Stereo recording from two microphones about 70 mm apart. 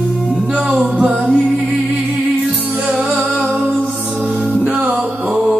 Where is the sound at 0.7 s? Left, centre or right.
Centre.